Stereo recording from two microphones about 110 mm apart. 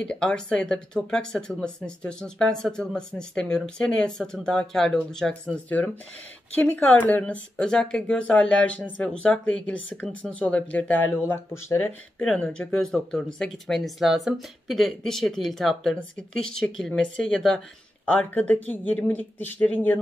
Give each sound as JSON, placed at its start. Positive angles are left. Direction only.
{"t": 0.0, "sound": "speech", "side_deg": 10}
{"t": 12.2, "sound": "speech", "side_deg": 10}